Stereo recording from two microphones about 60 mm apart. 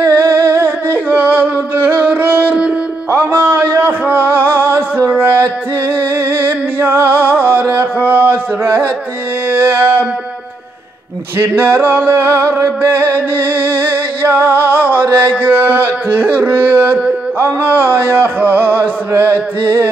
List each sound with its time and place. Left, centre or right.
0.1 s humming: right
2.0 s music: right
3.1 s a sound: right
11.3 s a sound: right
12.8 s music: right
15.4 s carnatic music: right
17.4 s music: right